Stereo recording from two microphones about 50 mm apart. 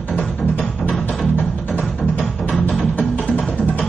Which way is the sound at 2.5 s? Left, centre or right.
Centre.